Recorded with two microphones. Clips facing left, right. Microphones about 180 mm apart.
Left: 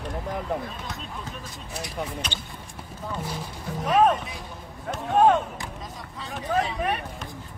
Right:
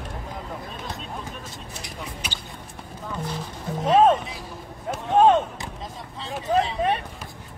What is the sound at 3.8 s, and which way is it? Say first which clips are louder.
Speech: right 3 dB; 25° right (ahead or behind).